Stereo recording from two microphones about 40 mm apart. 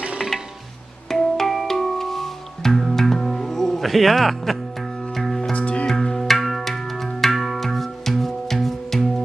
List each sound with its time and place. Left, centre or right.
1.1 s music: centre
5.4 s music: left
5.9 s music: centre